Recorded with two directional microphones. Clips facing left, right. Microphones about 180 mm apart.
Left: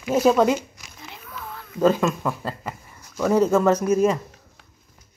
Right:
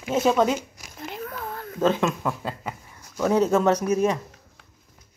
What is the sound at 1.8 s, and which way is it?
Speech, centre (ahead or behind).